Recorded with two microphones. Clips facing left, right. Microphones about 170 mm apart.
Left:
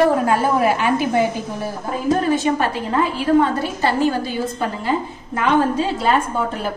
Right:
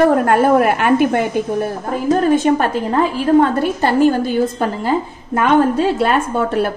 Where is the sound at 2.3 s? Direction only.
55° right (ahead or behind).